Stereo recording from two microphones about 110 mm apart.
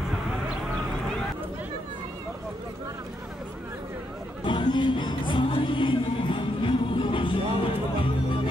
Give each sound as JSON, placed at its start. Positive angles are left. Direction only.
{"t": 4.5, "sound": "music", "side_deg": 45}